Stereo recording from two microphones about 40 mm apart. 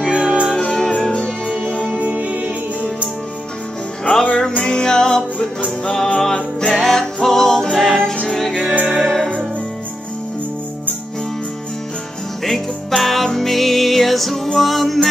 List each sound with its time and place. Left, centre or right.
0.1 s music: right
0.6 s music: left
2.0 s music: right
4.4 s music: centre
6.7 s music: centre
8.7 s music: right
9.0 s music: centre
12.4 s music: centre